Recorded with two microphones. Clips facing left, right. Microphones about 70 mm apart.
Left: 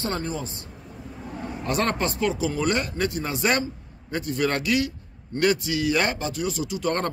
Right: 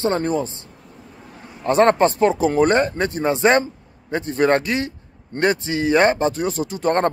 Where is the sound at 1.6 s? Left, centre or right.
Right.